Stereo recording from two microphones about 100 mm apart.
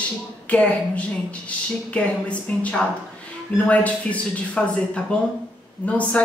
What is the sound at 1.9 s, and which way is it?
Speech, 10° left (ahead or behind).